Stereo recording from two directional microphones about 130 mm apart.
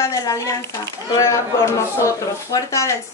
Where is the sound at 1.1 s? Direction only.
25° left (ahead or behind).